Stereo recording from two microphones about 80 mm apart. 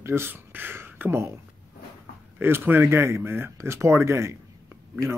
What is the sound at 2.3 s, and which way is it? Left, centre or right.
Speech, right.